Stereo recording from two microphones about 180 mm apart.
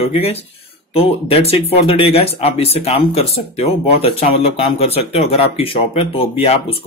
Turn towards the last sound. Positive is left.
turn(degrees=35)  # may be behind; listen again after turning